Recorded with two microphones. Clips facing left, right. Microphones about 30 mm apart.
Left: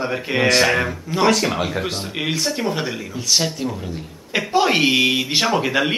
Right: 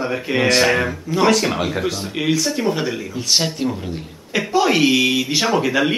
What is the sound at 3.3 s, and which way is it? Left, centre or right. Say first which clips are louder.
Speech: right 1 dB; centre.